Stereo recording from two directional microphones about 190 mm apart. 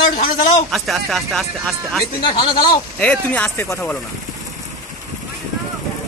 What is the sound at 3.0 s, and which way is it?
Speech, 5° left (ahead or behind).